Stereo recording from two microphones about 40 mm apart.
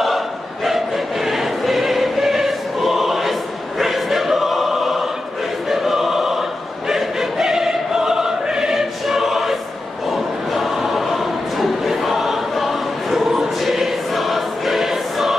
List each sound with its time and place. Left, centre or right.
0.7 s choir: centre